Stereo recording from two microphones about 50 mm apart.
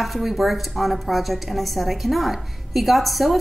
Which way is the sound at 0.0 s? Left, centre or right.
Centre.